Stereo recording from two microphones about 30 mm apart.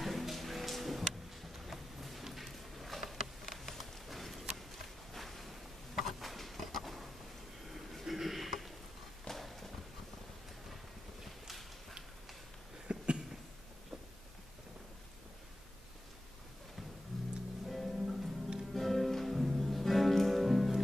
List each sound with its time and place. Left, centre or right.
0.0 s music: centre
2.5 s a sound: centre
9.3 s clip-clop: centre
12.8 s a sound: right
17.1 s music: centre
17.8 s music: centre